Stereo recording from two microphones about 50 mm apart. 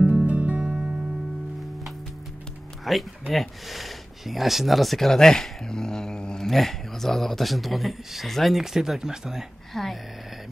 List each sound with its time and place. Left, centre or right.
0.3 s music: right
2.8 s speech: centre
9.8 s speech: centre